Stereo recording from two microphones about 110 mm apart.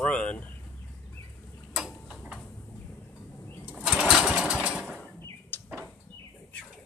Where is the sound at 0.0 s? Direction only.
10° left (ahead or behind).